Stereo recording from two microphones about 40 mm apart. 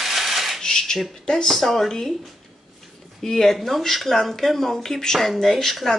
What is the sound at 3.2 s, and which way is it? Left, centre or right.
Speech, centre.